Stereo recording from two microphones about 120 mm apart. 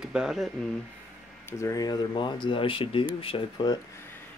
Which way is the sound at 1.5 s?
30° left (ahead or behind).